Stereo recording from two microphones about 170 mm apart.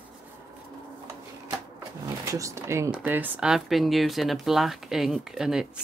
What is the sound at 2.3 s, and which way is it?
Speech, 15° right (ahead or behind).